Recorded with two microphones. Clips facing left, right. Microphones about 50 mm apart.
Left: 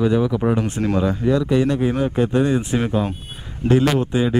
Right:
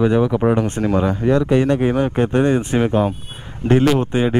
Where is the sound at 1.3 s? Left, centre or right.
Right.